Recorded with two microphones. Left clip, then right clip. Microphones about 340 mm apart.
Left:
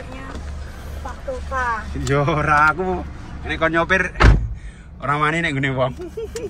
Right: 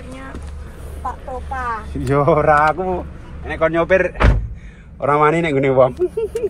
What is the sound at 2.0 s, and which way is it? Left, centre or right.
Speech, centre.